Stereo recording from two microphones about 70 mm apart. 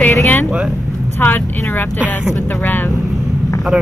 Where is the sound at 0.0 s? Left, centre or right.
Left.